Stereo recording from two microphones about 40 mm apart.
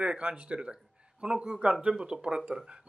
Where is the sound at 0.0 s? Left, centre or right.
Right.